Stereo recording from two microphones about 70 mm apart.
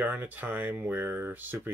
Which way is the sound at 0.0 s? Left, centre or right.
Right.